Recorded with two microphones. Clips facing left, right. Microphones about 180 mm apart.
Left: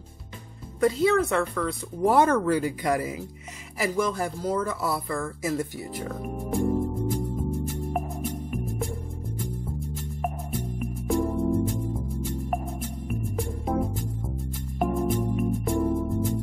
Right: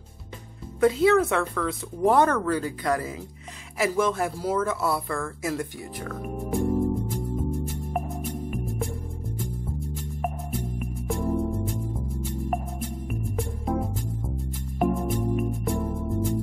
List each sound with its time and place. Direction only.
0.7 s speech: centre (ahead or behind)
3.7 s speech: centre (ahead or behind)
6.2 s music: centre (ahead or behind)